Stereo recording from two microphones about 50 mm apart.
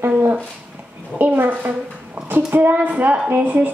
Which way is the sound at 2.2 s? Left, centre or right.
Right.